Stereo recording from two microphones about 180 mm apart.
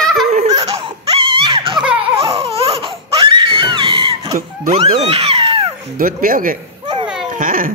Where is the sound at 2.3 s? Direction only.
30° right (ahead or behind).